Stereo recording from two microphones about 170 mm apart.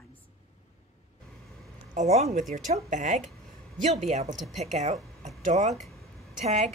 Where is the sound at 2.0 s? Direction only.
40° right (ahead or behind).